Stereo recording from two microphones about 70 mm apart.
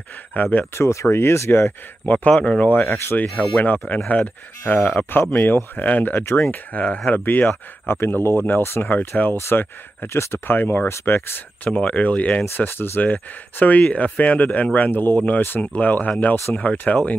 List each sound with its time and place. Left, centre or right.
0.3 s speech: left
0.7 s speech: left
6.2 s speech: left
6.5 s speech: left
9.4 s speech: left
11.7 s speech: centre
12.4 s speech: left